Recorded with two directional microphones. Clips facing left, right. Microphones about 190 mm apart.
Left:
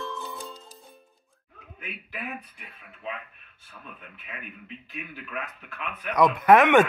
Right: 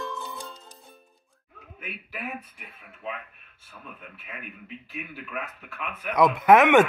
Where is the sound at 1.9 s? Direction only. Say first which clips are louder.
Right 1 dB; 5° right (ahead or behind).